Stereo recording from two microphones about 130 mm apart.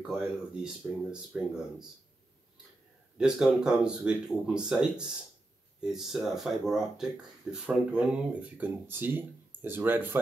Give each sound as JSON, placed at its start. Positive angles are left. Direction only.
{"t": 0.0, "sound": "speech", "side_deg": -5}
{"t": 3.2, "sound": "speech", "side_deg": -5}